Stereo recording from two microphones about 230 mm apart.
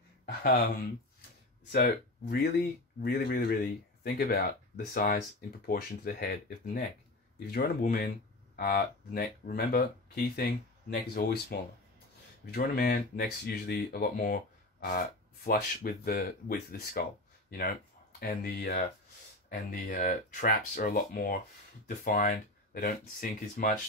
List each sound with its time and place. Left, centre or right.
0.4 s speech: left
1.7 s speech: left
18.2 s speech: left